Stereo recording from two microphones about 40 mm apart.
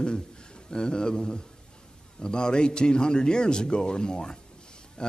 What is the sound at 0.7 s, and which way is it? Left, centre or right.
A man's voice, left.